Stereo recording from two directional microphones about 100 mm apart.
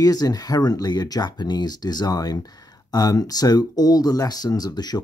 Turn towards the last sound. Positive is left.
turn(degrees=45)  # may be behind; listen again after turning